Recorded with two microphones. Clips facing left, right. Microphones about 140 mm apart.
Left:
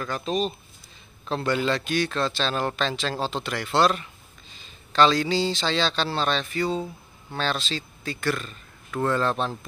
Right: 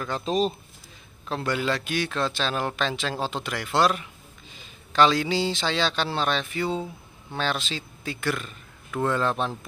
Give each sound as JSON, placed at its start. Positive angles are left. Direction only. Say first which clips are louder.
{"t": 0.2, "sound": "speech", "louder": "right 2 dB", "side_deg": -35}
{"t": 1.3, "sound": "a man's voice", "louder": "left 2 dB", "side_deg": -5}